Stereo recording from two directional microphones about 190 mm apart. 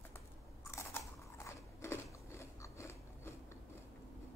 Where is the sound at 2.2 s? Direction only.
15° left (ahead or behind).